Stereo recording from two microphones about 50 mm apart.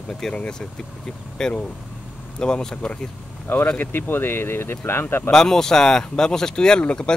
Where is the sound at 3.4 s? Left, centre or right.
Left.